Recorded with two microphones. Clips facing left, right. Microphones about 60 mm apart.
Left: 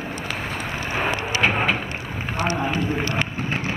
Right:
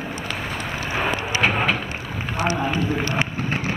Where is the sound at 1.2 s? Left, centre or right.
Centre.